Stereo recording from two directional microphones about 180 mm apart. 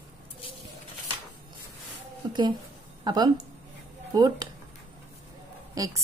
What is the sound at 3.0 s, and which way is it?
Speech, 25° right (ahead or behind).